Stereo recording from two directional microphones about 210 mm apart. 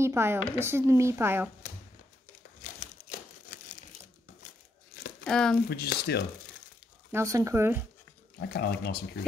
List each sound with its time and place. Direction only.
0.0 s speech: 10° right (ahead or behind)
3.1 s crumpling: 40° left (ahead or behind)
5.2 s speech: 5° left (ahead or behind)
5.7 s speech: 50° left (ahead or behind)
7.1 s speech: 15° right (ahead or behind)
8.4 s speech: 50° left (ahead or behind)